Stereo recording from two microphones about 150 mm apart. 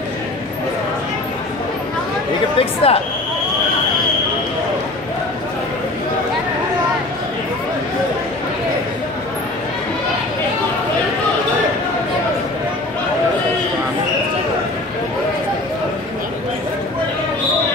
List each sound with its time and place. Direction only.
2.6 s speech: 40° left (ahead or behind)